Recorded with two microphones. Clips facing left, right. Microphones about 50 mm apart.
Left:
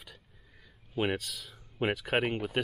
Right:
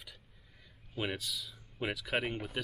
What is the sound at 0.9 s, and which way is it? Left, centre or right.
Speech, left.